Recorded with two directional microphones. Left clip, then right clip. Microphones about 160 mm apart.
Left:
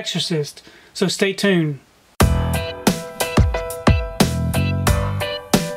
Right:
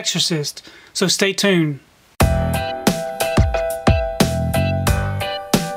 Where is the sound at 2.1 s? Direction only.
Centre (ahead or behind).